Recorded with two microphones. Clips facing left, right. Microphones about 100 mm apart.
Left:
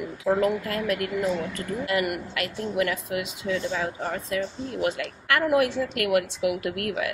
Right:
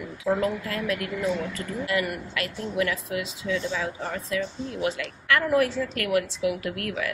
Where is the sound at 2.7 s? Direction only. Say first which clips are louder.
Left 1 dB; 45° left (ahead or behind).